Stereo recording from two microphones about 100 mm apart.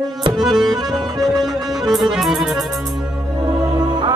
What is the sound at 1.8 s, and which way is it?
Music, centre (ahead or behind).